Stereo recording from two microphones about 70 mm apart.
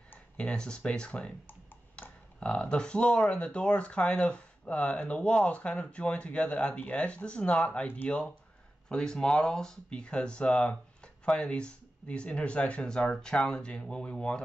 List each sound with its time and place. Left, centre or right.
0.4 s speech: centre
1.5 s typing: left
2.4 s speech: centre